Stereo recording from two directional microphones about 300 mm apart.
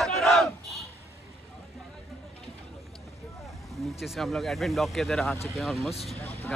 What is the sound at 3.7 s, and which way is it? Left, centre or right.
Speech, centre.